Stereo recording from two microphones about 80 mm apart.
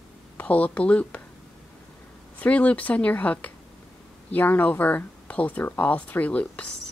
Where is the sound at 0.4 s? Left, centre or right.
Centre.